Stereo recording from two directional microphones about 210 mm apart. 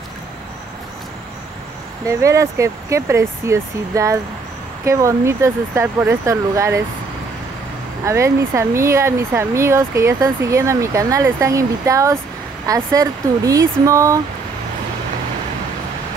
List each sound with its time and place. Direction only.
2.0 s speech: 15° right (ahead or behind)
8.0 s speech: 15° right (ahead or behind)